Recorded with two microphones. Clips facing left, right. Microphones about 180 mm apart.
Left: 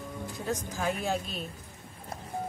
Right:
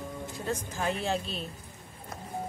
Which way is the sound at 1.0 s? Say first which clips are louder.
Even; 35° right (ahead or behind).